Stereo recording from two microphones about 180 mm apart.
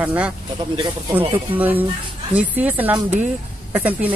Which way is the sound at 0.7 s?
25° right (ahead or behind).